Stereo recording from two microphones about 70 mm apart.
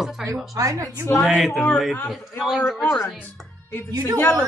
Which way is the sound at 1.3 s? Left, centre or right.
Centre.